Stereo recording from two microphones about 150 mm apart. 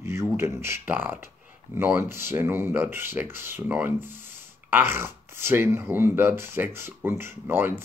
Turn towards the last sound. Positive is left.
turn(degrees=-15)  # may be behind; listen again after turning